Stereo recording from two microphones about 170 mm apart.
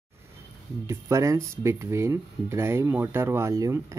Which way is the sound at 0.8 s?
20° right (ahead or behind).